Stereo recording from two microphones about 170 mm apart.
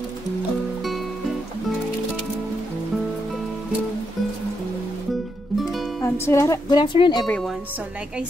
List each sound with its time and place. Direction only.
6.0 s speech: 15° left (ahead or behind)
6.8 s speech: 30° left (ahead or behind)
7.2 s a woman's voice: 5° left (ahead or behind)